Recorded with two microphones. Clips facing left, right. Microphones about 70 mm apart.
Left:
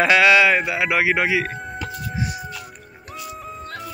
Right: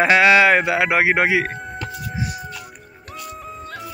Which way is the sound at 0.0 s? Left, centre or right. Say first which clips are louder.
Right 1 dB; right.